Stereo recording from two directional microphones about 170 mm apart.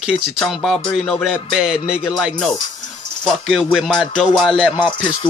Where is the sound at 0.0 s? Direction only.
Centre (ahead or behind).